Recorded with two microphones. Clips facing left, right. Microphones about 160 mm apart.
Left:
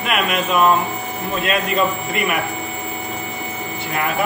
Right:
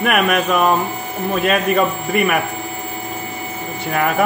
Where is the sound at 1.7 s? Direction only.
50° right (ahead or behind).